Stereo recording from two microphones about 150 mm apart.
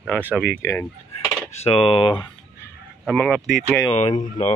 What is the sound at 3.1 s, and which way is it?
Speech, 5° left (ahead or behind).